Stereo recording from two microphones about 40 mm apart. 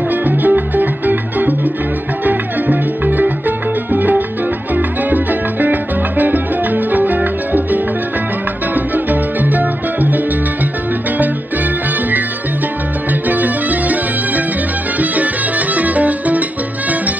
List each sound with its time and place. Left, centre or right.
0.1 s music: right
13.3 s music: right